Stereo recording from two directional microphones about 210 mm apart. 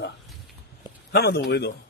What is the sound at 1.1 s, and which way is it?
Speech, 50° left (ahead or behind).